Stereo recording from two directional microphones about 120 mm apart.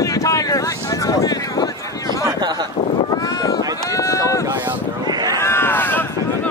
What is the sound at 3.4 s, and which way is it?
Run, 30° left (ahead or behind).